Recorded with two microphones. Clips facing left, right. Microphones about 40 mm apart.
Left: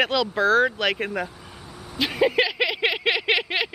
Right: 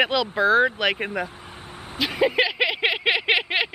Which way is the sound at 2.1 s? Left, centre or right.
Centre.